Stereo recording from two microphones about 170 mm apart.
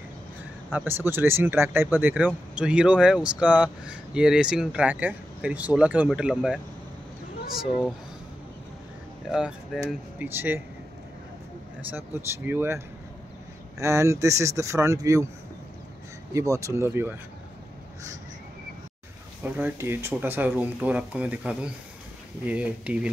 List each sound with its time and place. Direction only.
0.7 s speech: 10° right (ahead or behind)
9.8 s speech: 10° right (ahead or behind)
12.4 s speech: 15° right (ahead or behind)
16.3 s speech: 20° right (ahead or behind)
19.4 s speech: 10° right (ahead or behind)